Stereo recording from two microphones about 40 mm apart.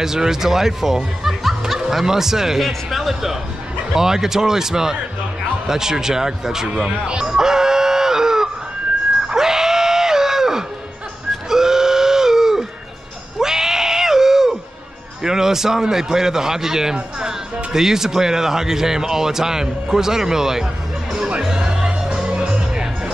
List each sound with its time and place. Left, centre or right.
0.0 s speech: centre
7.1 s music: centre
9.3 s screaming: centre
11.4 s a sound: centre
15.2 s speech: centre
21.4 s music: centre